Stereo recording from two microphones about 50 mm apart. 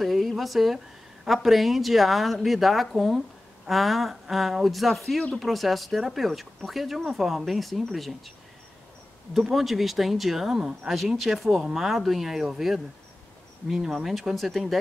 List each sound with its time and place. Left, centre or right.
0.0 s a sound: centre
1.2 s speech: centre
9.3 s speech: centre
10.6 s speech: centre
10.9 s speech: centre